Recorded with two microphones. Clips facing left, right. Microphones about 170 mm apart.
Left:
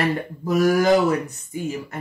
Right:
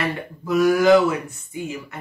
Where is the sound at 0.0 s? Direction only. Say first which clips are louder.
Left 3 dB; 40° left (ahead or behind).